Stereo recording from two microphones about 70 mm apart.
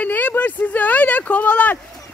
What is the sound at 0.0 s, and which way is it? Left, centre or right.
Speech, left.